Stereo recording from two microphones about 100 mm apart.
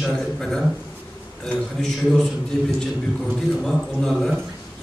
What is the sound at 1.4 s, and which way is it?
Speech, 5° left (ahead or behind).